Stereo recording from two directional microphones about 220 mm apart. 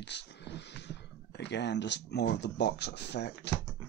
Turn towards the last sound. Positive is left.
turn(degrees=50)  # may be behind; listen again after turning